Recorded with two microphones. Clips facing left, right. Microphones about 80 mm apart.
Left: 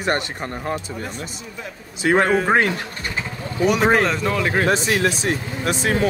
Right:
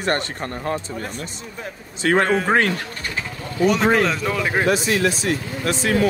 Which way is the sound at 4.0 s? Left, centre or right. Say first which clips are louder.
Left 1 dB; centre.